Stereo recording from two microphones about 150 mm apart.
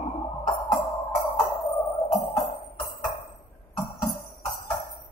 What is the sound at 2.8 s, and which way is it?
Music, 70° left (ahead or behind).